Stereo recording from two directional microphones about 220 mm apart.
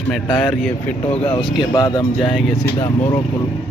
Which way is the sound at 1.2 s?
25° left (ahead or behind).